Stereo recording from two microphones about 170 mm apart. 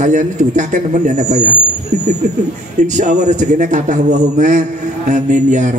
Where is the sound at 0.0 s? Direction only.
45° right (ahead or behind).